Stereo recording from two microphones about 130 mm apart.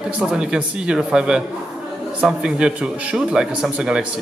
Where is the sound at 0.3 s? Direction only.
5° right (ahead or behind).